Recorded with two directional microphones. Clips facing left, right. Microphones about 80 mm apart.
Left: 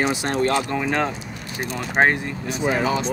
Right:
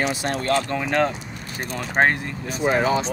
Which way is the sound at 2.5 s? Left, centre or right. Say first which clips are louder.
Right 1 dB; right.